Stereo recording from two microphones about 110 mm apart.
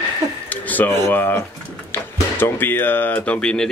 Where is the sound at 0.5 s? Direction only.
15° left (ahead or behind).